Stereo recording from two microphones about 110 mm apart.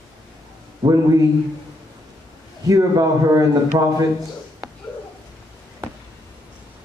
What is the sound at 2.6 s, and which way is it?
A man's voice, 30° right (ahead or behind).